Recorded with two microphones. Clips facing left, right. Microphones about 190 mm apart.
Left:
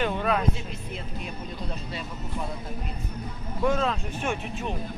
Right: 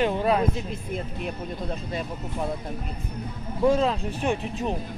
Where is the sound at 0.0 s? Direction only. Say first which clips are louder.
Right 4 dB; 30° right (ahead or behind).